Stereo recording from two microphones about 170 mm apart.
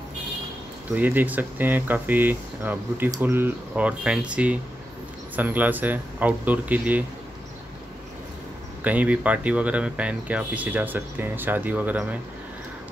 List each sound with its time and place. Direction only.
0.9 s speech: 10° right (ahead or behind)
8.8 s speech: 10° right (ahead or behind)